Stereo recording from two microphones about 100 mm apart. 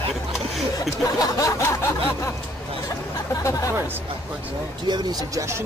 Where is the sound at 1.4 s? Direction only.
30° left (ahead or behind).